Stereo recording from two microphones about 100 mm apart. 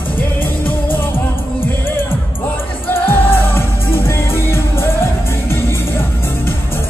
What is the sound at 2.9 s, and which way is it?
Music, 20° left (ahead or behind).